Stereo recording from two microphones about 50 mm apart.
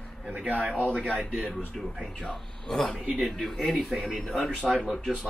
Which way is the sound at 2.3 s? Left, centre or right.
Centre.